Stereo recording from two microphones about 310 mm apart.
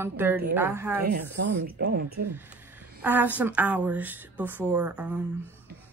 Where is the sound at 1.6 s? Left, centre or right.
Right.